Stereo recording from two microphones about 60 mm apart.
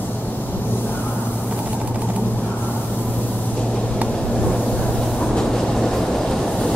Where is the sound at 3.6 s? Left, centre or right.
Centre.